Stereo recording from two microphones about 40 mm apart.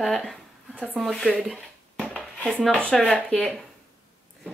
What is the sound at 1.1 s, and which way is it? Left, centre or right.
Speech, left.